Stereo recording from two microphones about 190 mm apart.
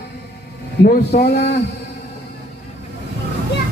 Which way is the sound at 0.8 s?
60° left (ahead or behind).